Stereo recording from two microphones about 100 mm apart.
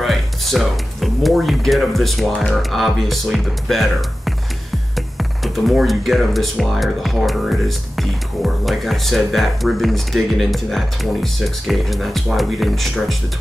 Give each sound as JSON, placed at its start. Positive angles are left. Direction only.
{"t": 0.0, "sound": "speech", "side_deg": 0}
{"t": 5.4, "sound": "speech", "side_deg": 0}